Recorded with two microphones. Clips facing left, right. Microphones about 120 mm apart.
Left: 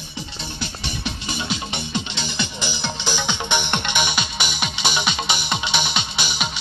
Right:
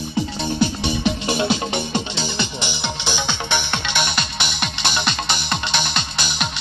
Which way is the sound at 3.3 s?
15° left (ahead or behind).